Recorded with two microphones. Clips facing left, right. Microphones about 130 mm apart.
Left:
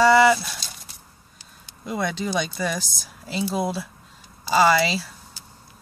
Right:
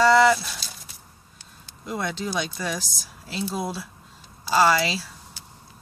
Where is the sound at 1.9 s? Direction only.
Centre (ahead or behind).